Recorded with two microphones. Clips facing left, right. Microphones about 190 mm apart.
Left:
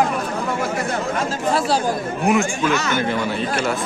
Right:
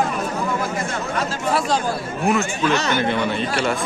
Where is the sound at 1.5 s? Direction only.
10° left (ahead or behind).